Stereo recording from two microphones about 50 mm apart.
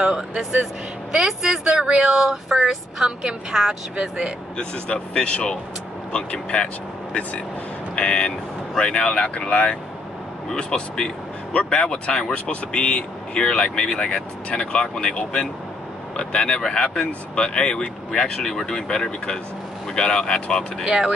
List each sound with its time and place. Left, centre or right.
0.4 s a woman's voice: centre
1.6 s speech: centre
2.5 s a woman's voice: centre
3.2 s a woman's voice: centre
4.6 s speech: centre
7.9 s speech: left
10.7 s speech: centre
20.8 s speech: centre